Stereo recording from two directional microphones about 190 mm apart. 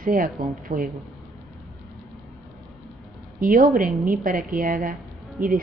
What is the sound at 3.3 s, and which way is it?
Speech, 45° right (ahead or behind).